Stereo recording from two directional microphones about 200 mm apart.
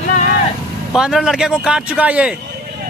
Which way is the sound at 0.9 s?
Centre (ahead or behind).